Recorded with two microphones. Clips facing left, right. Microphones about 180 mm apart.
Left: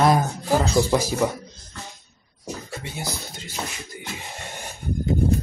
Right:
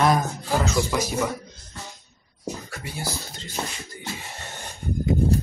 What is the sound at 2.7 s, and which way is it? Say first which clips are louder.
Beatboxing: left 1 dB; 25° left (ahead or behind).